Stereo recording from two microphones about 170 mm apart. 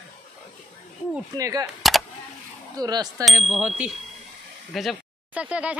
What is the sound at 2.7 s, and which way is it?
Speech, 20° right (ahead or behind).